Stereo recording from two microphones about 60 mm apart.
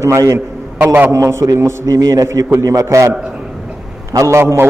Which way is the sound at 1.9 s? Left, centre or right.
Right.